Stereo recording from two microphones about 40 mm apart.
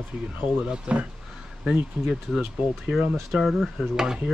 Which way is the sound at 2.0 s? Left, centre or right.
Centre.